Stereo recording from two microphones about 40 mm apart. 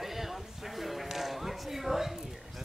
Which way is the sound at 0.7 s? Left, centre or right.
Centre.